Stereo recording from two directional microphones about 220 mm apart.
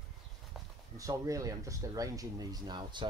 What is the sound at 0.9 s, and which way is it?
Speech, 15° right (ahead or behind).